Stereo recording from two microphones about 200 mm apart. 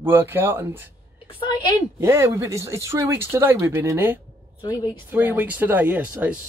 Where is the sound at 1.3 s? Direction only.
20° left (ahead or behind).